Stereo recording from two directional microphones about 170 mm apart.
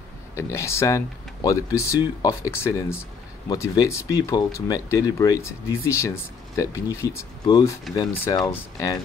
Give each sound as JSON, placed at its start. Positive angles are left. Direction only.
{"t": 0.4, "sound": "speech", "side_deg": 15}